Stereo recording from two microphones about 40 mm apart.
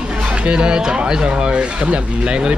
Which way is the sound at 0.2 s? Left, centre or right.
Right.